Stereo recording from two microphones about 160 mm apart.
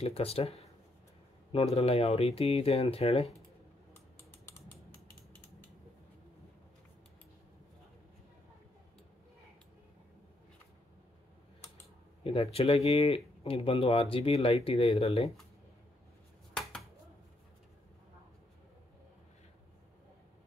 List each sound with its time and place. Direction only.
0.0 s speech: 40° left (ahead or behind)
3.9 s typing: 15° left (ahead or behind)
12.2 s speech: 35° left (ahead or behind)